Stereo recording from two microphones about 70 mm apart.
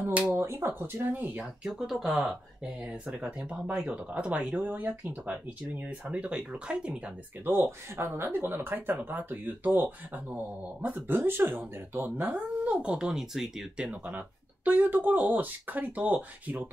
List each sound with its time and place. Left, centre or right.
0.3 s speech: right
1.6 s speech: centre
3.2 s speech: centre
7.4 s speech: right
12.7 s speech: centre
13.8 s speech: right